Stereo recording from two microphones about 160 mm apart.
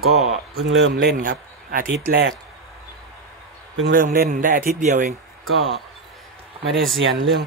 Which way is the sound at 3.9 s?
60° right (ahead or behind).